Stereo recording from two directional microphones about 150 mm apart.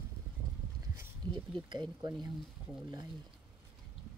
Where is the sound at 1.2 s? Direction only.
30° right (ahead or behind).